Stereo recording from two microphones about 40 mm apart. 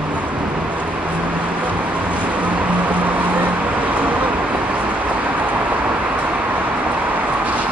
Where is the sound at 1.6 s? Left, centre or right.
Right.